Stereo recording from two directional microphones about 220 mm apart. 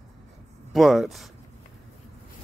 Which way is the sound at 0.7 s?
Centre (ahead or behind).